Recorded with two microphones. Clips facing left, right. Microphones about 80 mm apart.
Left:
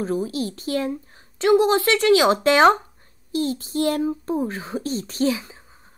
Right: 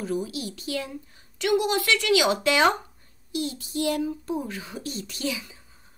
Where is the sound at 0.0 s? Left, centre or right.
Left.